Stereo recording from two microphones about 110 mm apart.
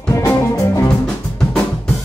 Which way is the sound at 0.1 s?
30° left (ahead or behind).